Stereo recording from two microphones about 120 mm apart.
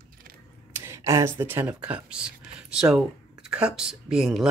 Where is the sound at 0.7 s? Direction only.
25° right (ahead or behind).